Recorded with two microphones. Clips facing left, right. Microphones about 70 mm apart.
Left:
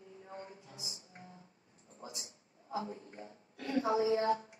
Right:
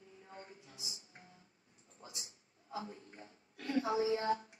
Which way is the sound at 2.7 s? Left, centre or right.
Left.